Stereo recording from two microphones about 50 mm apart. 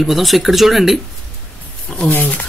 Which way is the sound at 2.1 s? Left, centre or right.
Left.